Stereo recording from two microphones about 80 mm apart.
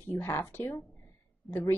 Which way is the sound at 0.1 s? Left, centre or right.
Left.